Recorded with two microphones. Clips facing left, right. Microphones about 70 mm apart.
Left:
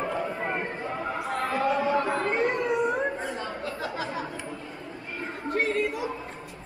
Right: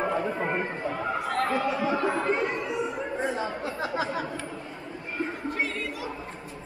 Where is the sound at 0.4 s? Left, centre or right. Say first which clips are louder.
Right 2 dB; centre.